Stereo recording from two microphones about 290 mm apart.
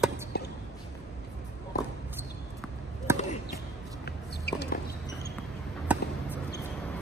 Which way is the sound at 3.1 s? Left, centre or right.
Centre.